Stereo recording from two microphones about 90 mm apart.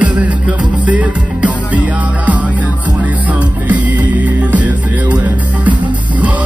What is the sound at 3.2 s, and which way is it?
Music, 15° right (ahead or behind).